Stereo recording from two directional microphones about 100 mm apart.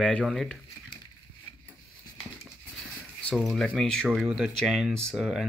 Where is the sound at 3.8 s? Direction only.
5° left (ahead or behind).